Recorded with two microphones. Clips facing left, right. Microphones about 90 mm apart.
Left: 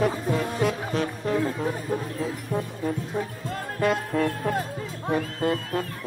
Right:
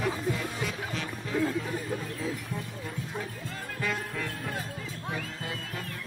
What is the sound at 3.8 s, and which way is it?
Music, 55° left (ahead or behind).